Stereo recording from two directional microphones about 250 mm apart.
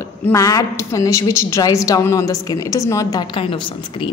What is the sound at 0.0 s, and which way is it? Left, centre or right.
A woman's voice, centre.